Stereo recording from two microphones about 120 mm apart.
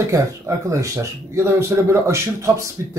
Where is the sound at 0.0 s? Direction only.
25° right (ahead or behind).